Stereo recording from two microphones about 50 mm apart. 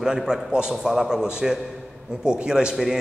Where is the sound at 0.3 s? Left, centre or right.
Centre.